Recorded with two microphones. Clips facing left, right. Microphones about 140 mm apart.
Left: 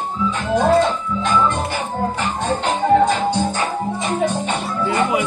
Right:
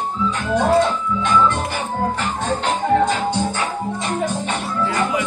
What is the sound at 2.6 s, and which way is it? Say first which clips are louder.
Music: left 3 dB; centre (ahead or behind).